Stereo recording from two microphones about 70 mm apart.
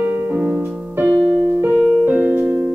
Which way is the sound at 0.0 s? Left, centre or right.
Right.